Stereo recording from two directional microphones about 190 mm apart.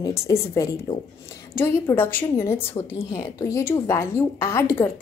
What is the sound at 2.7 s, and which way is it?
A woman's voice, 20° left (ahead or behind).